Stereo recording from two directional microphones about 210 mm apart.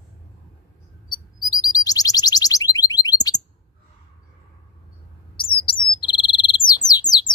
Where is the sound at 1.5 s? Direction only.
15° left (ahead or behind).